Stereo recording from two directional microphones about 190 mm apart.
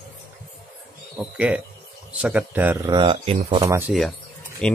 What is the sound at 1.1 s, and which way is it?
Speech, 5° right (ahead or behind).